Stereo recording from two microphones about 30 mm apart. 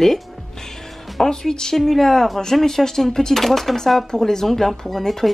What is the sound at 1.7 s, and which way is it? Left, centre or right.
Speech, centre.